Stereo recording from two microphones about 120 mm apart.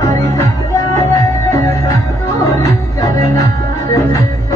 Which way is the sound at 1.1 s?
25° left (ahead or behind).